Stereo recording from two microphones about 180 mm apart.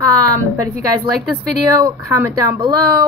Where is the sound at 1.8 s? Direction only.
20° right (ahead or behind).